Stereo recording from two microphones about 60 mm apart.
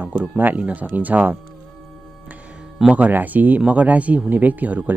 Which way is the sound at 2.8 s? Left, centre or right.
Centre.